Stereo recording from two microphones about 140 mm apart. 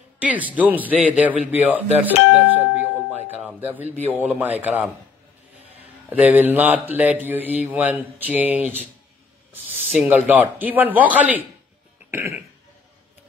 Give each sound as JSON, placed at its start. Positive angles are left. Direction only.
{"t": 0.2, "sound": "speech", "side_deg": -10}
{"t": 6.0, "sound": "speech", "side_deg": -10}